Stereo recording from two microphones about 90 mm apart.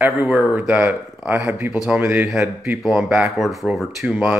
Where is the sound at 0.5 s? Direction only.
20° right (ahead or behind).